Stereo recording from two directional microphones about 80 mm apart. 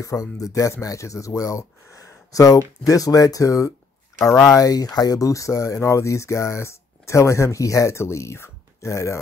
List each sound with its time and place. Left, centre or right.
0.0 s speech: left